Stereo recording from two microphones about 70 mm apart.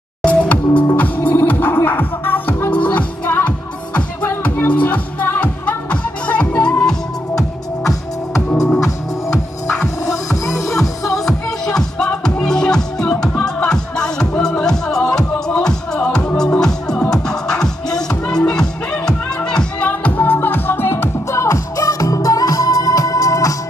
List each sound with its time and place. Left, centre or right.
0.2 s music: centre
8.5 s music: centre; by 23.5 s left